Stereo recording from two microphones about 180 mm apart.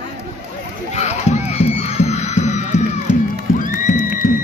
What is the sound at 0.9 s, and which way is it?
Music, 40° left (ahead or behind).